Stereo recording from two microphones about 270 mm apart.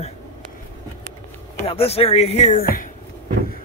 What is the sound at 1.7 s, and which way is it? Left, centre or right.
Speech, left.